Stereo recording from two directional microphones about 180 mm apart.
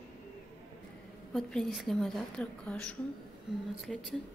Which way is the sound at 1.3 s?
Centre (ahead or behind).